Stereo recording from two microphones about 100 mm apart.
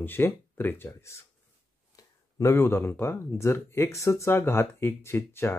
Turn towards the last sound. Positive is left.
turn(degrees=25)  # may be behind; listen again after turning